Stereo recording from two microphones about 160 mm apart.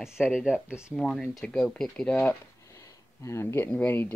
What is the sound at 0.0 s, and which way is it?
Speech, centre (ahead or behind).